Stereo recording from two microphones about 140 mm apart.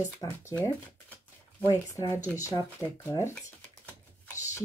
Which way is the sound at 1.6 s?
25° left (ahead or behind).